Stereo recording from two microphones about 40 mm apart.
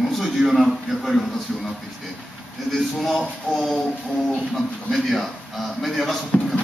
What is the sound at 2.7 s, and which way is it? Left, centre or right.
A man's voice, centre.